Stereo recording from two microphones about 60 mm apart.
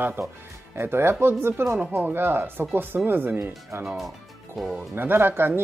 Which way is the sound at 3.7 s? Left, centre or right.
Right.